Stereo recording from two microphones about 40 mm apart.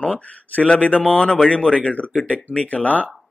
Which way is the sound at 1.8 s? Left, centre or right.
Left.